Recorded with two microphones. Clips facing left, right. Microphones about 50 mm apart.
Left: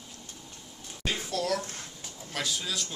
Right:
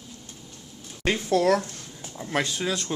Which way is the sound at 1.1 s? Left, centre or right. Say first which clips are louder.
Right 9 dB; right.